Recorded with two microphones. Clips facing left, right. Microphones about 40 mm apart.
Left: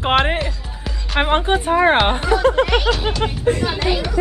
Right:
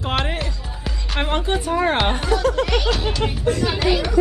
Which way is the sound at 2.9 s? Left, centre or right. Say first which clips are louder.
Left 2 dB; centre.